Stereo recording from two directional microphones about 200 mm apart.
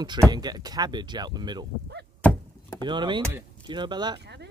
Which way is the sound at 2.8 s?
25° right (ahead or behind).